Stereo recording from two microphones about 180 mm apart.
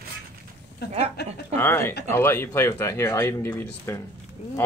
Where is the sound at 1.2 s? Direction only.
65° left (ahead or behind).